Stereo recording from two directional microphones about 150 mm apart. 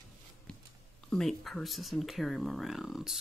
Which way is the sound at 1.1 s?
Centre (ahead or behind).